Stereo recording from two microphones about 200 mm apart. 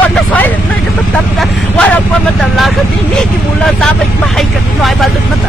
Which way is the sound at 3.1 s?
Centre (ahead or behind).